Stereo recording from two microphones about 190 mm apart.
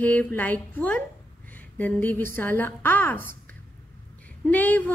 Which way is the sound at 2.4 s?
10° left (ahead or behind).